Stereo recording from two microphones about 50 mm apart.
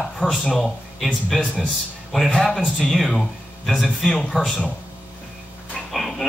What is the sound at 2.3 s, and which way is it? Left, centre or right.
Speech, centre.